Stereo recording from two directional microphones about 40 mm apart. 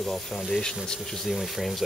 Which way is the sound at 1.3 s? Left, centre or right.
Centre.